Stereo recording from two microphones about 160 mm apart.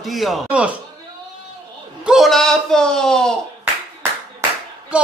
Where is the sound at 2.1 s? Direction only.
Centre (ahead or behind).